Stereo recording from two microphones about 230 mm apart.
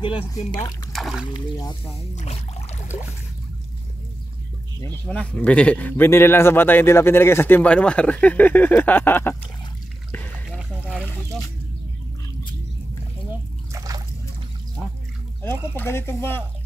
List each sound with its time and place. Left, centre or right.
0.0 s speech: left
0.9 s water: centre
1.3 s speech: centre
2.1 s a sound: left
4.8 s speech: centre
13.7 s liquid: centre
15.4 s speech: centre